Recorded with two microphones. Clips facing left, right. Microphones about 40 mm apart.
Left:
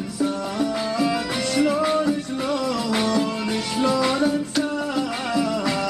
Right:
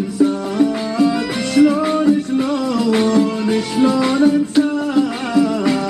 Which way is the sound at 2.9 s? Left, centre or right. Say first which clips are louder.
Right 8 dB; centre.